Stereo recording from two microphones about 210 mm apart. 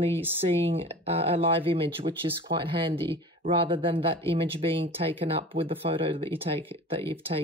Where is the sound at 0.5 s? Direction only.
25° right (ahead or behind).